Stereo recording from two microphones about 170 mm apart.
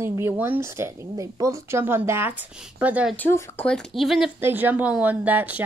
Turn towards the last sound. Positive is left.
turn(degrees=-10)  # may be behind; listen again after turning